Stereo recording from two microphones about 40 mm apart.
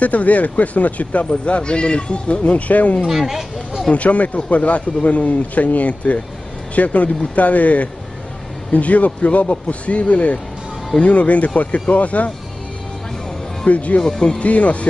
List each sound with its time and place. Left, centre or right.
0.0 s speech: left
2.7 s speech: left
3.1 s speech: centre
3.9 s speech: left
13.7 s speech: left
14.0 s speech: centre
14.4 s speech: left